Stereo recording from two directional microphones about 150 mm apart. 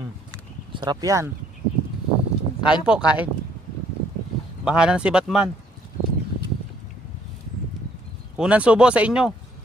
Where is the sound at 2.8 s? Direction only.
5° right (ahead or behind).